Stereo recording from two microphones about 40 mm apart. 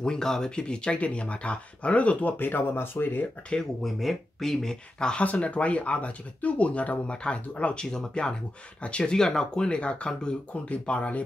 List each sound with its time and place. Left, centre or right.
0.0 s speech: centre
0.9 s speech: left
2.3 s speech: left
3.8 s speech: centre
4.9 s speech: left
5.2 s speech: left
7.8 s speech: centre
9.1 s speech: centre; by 11.2 s left